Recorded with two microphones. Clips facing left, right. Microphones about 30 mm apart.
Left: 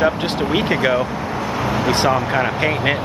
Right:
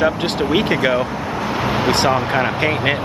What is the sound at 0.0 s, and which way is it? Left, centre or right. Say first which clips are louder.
Speech: even; centre.